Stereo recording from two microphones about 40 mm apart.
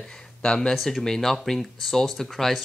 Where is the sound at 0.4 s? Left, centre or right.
Centre.